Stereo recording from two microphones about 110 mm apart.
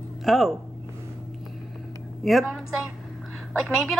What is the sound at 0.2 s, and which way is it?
Speech, centre (ahead or behind).